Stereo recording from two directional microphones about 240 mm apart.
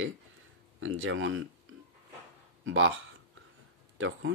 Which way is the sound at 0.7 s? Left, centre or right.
Right.